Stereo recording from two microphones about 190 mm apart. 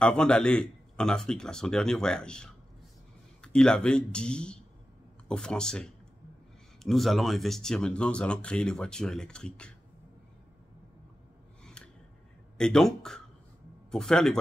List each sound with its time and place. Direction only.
0.0 s speech: 5° left (ahead or behind)
11.6 s scissors: 5° left (ahead or behind)
12.5 s speech: 5° left (ahead or behind)